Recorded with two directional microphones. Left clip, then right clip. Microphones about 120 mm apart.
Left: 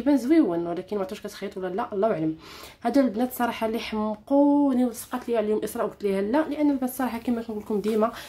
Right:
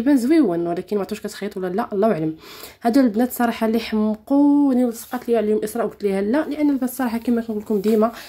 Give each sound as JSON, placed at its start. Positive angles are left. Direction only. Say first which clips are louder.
{"t": 0.0, "sound": "speech", "louder": "right 4 dB", "side_deg": -40}
{"t": 4.6, "sound": "speech", "louder": "right 5 dB", "side_deg": -25}